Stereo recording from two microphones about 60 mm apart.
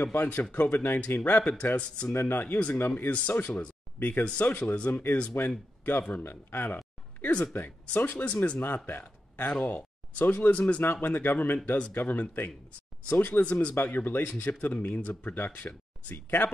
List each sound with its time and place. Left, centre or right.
0.0 s speech: left
1.8 s speech: centre
2.1 s speech: left
5.4 s speech: left
6.0 s speech: left
7.2 s a sound: left
7.5 s speech: left
9.5 s speech: centre
10.8 s speech: left
13.7 s speech: left